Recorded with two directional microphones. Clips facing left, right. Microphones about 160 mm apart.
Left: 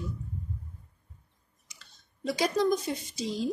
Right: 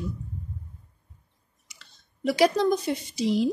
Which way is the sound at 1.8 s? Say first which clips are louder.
Right 7 dB; 75° right (ahead or behind).